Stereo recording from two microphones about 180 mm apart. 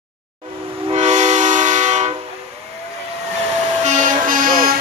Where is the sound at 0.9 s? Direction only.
40° right (ahead or behind).